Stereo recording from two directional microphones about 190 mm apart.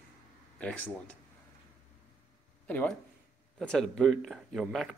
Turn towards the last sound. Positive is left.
turn(degrees=0)  # may be behind; listen again after turning